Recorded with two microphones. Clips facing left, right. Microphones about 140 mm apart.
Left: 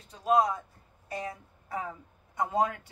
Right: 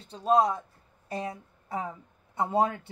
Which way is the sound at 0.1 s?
30° right (ahead or behind).